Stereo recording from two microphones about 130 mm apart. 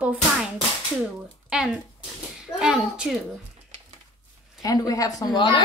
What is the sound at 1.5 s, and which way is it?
A child's voice, 5° right (ahead or behind).